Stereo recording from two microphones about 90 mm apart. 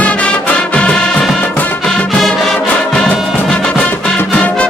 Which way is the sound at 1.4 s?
20° left (ahead or behind).